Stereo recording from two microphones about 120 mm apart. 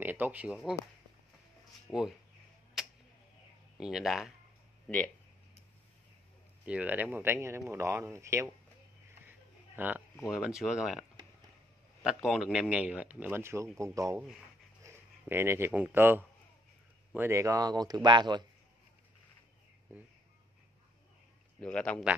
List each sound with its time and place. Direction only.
0.0 s speech: 15° right (ahead or behind)
1.9 s speech: centre (ahead or behind)
2.8 s tick-tock: centre (ahead or behind)
3.8 s speech: centre (ahead or behind)
4.8 s speech: 10° left (ahead or behind)
6.6 s speech: 10° right (ahead or behind)
9.8 s speech: 15° right (ahead or behind); by 18.4 s 40° right (ahead or behind)
21.5 s speech: 10° left (ahead or behind)